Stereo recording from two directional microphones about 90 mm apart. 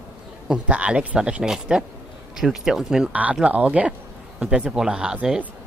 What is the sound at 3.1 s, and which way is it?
Speech, 15° right (ahead or behind).